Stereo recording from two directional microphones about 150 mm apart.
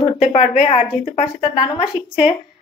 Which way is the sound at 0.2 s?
45° left (ahead or behind).